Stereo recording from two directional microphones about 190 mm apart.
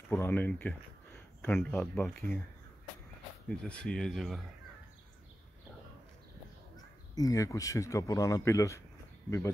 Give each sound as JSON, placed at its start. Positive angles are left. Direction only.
{"t": 0.1, "sound": "speech", "side_deg": 10}
{"t": 3.4, "sound": "speech", "side_deg": 5}
{"t": 7.2, "sound": "speech", "side_deg": 15}